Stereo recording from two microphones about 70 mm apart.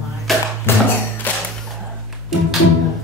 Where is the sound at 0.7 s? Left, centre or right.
Left.